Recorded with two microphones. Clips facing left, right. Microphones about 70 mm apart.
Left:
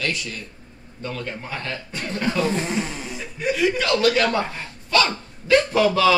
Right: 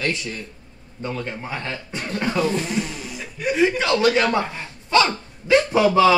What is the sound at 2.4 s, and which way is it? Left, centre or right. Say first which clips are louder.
Speech: right 1 dB; left.